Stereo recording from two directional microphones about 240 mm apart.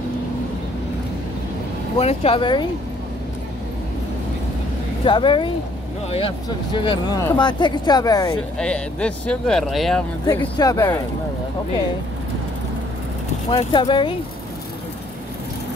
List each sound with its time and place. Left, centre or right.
2.0 s speech: left
5.0 s speech: centre
8.5 s speech: centre
10.2 s speech: centre
13.5 s speech: left